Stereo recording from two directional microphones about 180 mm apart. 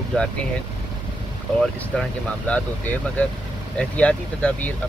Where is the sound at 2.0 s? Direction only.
5° left (ahead or behind).